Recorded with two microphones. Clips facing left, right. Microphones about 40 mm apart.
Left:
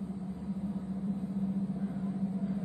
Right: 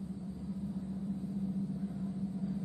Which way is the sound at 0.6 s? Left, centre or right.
Left.